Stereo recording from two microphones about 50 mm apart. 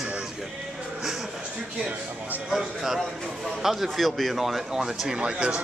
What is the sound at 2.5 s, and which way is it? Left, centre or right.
Speech, centre.